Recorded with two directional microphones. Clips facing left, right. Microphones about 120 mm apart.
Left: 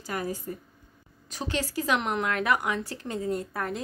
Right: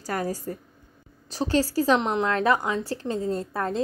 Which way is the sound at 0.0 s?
40° right (ahead or behind).